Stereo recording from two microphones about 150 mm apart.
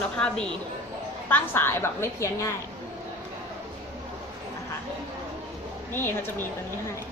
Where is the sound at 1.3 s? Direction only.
15° left (ahead or behind).